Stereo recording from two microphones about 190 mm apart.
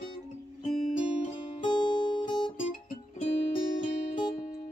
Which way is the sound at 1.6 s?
25° left (ahead or behind).